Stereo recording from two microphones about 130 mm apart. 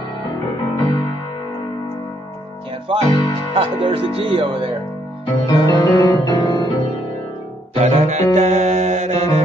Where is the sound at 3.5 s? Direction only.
45° right (ahead or behind).